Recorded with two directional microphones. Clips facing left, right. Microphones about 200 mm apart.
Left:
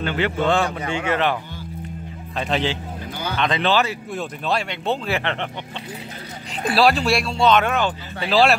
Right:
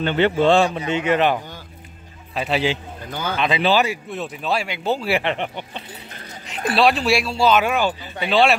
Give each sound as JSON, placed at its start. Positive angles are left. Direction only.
{"t": 0.0, "sound": "speech", "side_deg": -25}
{"t": 2.3, "sound": "speech", "side_deg": -5}
{"t": 6.5, "sound": "speech", "side_deg": 0}